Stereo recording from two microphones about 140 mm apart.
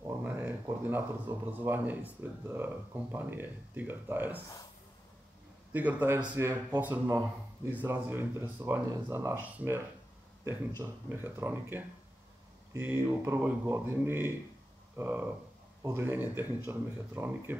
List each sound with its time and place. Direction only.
0.2 s speech: 15° right (ahead or behind)
5.7 s speech: 10° right (ahead or behind)
10.8 s speech: 15° right (ahead or behind)